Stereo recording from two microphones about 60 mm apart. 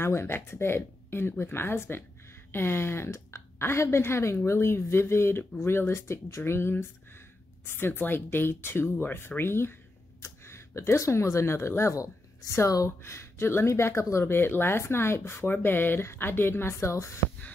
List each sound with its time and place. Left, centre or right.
0.0 s a woman's voice: left
13.0 s a woman's voice: left